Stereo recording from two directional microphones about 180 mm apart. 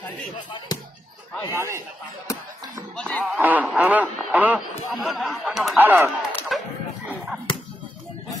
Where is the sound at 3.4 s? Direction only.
10° right (ahead or behind).